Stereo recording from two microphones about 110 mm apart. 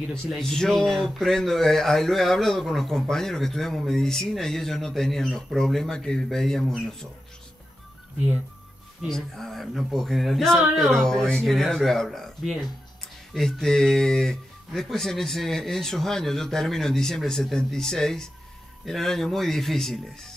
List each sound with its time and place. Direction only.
0.1 s speech: 5° left (ahead or behind)
9.0 s speech: 5° left (ahead or behind)